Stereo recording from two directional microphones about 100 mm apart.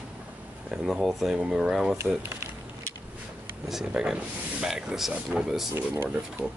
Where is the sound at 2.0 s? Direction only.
25° right (ahead or behind).